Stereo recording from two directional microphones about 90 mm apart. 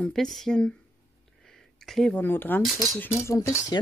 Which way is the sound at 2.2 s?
20° left (ahead or behind).